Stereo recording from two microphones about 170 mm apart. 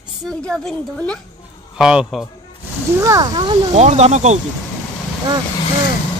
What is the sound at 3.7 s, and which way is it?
Speech, 40° right (ahead or behind).